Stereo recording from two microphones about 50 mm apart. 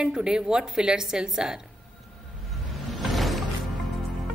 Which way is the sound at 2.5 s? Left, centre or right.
Centre.